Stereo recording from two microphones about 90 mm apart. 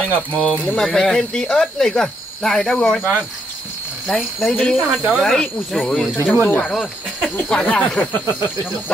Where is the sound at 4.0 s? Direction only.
10° left (ahead or behind).